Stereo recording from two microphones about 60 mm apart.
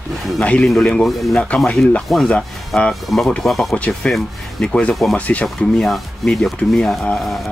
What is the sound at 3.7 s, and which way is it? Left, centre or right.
Speech, left.